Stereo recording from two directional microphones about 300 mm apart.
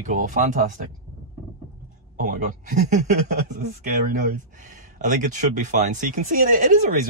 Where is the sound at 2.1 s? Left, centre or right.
Right.